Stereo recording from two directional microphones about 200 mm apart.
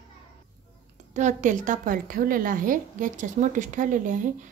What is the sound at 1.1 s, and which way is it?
A woman's voice, 40° right (ahead or behind).